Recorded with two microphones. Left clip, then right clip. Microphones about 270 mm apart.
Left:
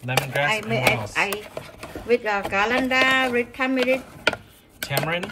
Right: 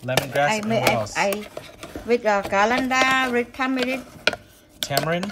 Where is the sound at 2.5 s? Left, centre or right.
Right.